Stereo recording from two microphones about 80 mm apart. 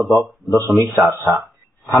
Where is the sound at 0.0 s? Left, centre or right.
Centre.